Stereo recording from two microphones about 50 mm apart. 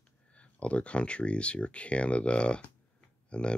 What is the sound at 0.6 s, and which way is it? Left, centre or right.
Speech, left.